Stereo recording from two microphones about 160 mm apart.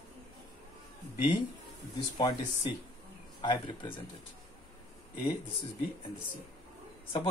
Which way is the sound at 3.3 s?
30° left (ahead or behind).